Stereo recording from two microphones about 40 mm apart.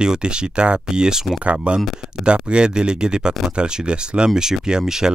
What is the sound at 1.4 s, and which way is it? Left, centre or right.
Speech, right.